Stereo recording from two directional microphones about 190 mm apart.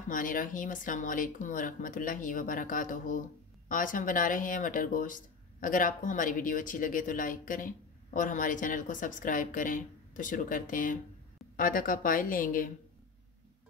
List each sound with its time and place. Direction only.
0.1 s speech: 45° left (ahead or behind)